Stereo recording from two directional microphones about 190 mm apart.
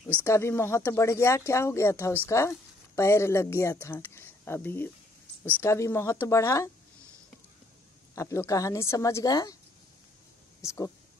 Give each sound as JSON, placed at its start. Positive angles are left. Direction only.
{"t": 0.2, "sound": "speech", "side_deg": 15}
{"t": 8.1, "sound": "speech", "side_deg": 15}
{"t": 10.6, "sound": "speech", "side_deg": 15}